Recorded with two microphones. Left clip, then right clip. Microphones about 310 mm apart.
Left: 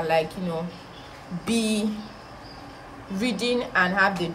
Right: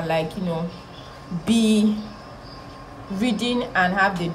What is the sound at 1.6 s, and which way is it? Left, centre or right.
Speech, centre.